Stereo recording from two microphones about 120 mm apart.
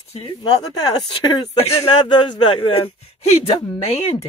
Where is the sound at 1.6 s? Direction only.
55° left (ahead or behind).